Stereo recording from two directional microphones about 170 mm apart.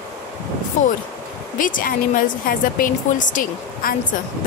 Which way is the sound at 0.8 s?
45° left (ahead or behind).